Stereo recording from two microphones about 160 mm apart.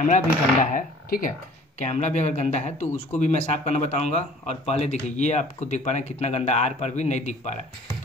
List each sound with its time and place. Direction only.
0.0 s speech: 50° left (ahead or behind)